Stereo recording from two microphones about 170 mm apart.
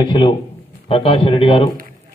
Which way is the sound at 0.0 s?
25° left (ahead or behind).